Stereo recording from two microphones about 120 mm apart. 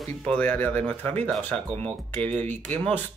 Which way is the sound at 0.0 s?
5° left (ahead or behind).